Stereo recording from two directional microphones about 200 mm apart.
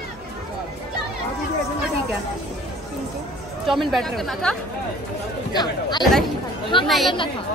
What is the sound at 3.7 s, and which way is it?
Speech, centre (ahead or behind).